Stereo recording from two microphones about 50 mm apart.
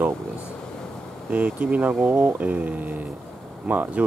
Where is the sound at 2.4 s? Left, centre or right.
Right.